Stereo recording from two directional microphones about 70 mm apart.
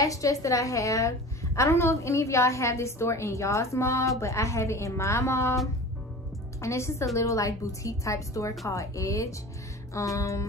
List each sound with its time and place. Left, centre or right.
0.0 s a woman's voice: left
6.6 s a woman's voice: left